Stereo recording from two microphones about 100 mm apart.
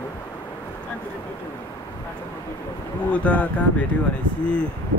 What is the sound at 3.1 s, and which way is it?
Speech, 15° left (ahead or behind).